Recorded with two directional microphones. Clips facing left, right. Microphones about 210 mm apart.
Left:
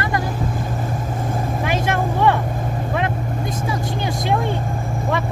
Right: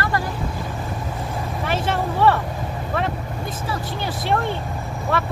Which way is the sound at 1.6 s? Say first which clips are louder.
Left 1 dB; 10° left (ahead or behind).